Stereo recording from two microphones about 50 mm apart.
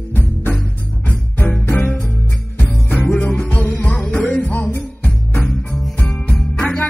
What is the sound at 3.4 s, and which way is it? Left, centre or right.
Music, left.